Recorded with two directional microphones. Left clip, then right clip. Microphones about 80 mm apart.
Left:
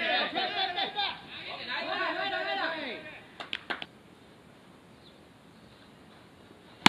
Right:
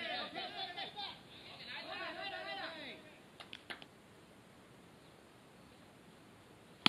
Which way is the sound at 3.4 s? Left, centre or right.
Right.